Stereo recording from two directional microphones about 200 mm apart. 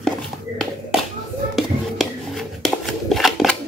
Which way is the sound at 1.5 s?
Centre (ahead or behind).